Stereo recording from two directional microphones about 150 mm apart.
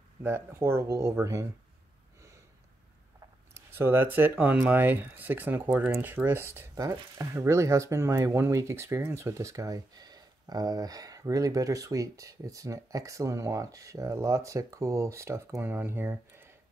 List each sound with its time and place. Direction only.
0.2 s speech: 15° right (ahead or behind)
3.5 s speech: 15° right (ahead or behind)